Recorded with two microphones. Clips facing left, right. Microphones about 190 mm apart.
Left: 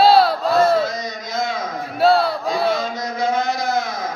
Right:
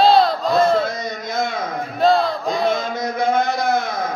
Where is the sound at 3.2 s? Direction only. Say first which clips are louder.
Right 2 dB; 55° right (ahead or behind).